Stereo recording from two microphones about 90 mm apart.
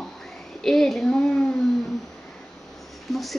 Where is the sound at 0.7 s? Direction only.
5° left (ahead or behind).